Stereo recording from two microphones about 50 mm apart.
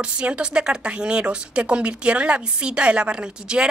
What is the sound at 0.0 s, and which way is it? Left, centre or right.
A woman's voice, right.